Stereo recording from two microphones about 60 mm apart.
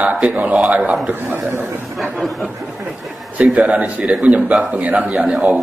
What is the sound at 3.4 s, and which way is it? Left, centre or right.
A man's voice, right.